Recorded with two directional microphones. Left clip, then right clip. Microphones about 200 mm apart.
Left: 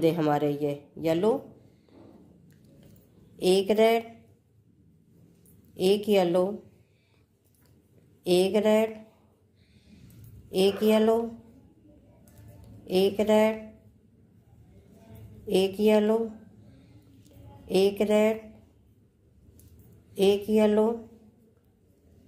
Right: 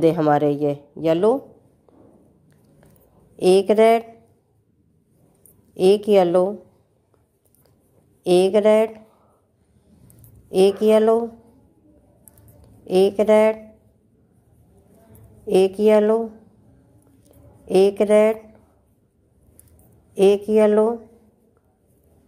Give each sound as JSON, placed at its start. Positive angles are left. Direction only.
{"t": 0.0, "sound": "speech", "side_deg": -35}
{"t": 3.3, "sound": "speech", "side_deg": -40}
{"t": 5.8, "sound": "speech", "side_deg": -40}
{"t": 8.2, "sound": "speech", "side_deg": -40}
{"t": 10.5, "sound": "speech", "side_deg": -40}
{"t": 12.8, "sound": "speech", "side_deg": -40}
{"t": 15.4, "sound": "speech", "side_deg": -40}
{"t": 17.6, "sound": "speech", "side_deg": -40}
{"t": 20.2, "sound": "speech", "side_deg": -40}